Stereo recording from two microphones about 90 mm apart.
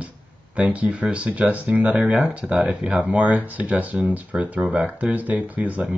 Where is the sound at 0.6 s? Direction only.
15° right (ahead or behind).